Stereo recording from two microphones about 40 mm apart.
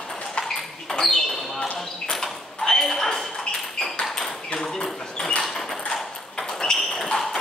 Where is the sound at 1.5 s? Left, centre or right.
Left.